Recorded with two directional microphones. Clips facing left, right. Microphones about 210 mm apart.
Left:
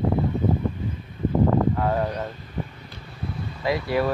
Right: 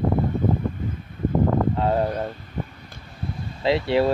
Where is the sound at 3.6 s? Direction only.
25° right (ahead or behind).